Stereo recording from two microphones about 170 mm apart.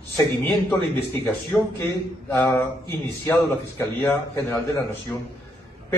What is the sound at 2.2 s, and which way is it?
A man's voice, 20° left (ahead or behind).